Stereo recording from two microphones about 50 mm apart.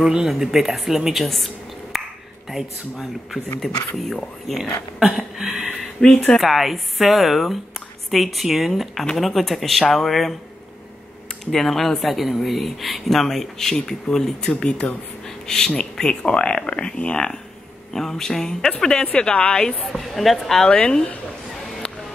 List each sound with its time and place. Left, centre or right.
0.0 s a woman's voice: centre
1.2 s a sound: centre
2.5 s a woman's voice: centre
5.0 s a woman's voice: centre
6.0 s speech: centre
6.4 s a woman's voice: centre
11.5 s a woman's voice: centre
19.8 s a woman's voice: centre
20.6 s speech: centre